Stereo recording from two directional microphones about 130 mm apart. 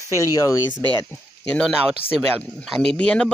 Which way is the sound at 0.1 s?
25° left (ahead or behind).